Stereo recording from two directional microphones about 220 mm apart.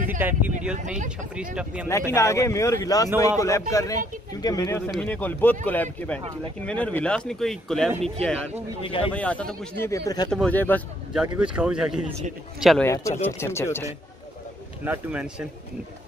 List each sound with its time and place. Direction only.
0.2 s speech: 10° right (ahead or behind)
1.9 s a man's voice: 15° left (ahead or behind)
8.8 s speech: 25° left (ahead or behind)
9.1 s speech: 5° left (ahead or behind)
9.8 s a man's voice: 15° left (ahead or behind)
10.3 s a man's voice: 5° left (ahead or behind)
11.1 s speech: 5° right (ahead or behind)
12.8 s a man's voice: 15° left (ahead or behind)
14.9 s speech: 5° right (ahead or behind)